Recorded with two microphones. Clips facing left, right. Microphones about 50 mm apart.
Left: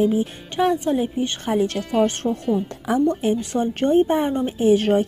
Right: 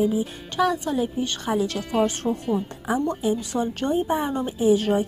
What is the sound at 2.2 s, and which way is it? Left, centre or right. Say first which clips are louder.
Speech: left 2 dB; centre.